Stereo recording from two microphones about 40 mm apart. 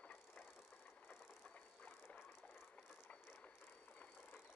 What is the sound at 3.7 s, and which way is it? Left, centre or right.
Vehicle, left.